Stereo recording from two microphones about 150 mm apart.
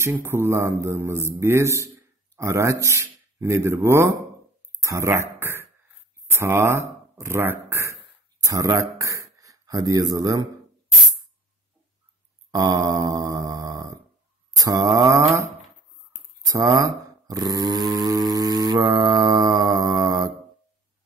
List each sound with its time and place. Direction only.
0.0 s speech: 15° right (ahead or behind)
12.4 s a sound: 25° right (ahead or behind)
14.6 s mantra: 25° right (ahead or behind)